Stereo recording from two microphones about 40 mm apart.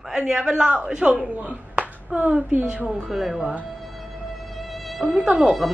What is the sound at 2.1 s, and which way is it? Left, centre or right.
Speech, right.